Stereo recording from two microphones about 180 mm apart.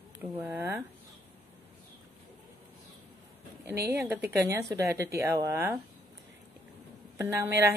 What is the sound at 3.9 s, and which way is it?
A woman's voice, 10° right (ahead or behind).